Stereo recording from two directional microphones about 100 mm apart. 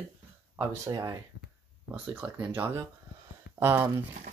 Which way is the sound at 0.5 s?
40° right (ahead or behind).